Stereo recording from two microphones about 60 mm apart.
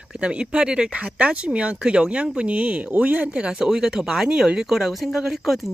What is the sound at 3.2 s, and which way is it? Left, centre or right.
Speech, centre.